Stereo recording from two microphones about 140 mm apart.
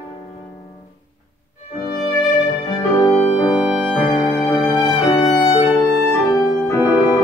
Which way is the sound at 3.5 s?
Centre (ahead or behind).